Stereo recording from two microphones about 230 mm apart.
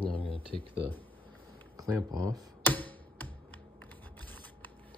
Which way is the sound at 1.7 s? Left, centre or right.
Centre.